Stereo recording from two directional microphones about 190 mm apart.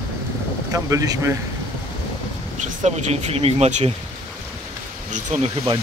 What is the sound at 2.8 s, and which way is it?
Speech, 35° right (ahead or behind).